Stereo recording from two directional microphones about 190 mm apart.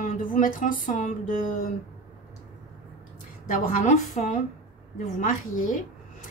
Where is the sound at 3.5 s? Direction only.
45° left (ahead or behind).